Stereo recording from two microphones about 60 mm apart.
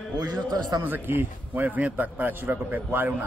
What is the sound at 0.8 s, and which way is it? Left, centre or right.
A man's voice, right.